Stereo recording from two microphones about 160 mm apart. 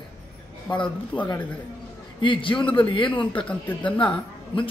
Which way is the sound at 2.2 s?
30° left (ahead or behind).